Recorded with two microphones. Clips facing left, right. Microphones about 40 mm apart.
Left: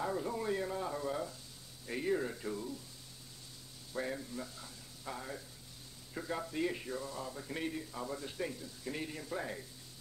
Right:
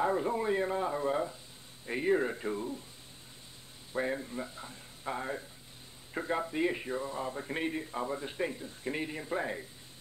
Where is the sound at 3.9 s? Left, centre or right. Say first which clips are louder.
Right 6 dB; right.